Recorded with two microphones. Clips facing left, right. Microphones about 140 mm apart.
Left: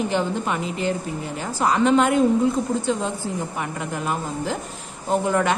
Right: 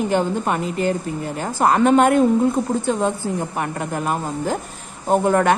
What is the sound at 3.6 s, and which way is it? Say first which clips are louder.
Speech: right 4 dB; 45° right (ahead or behind).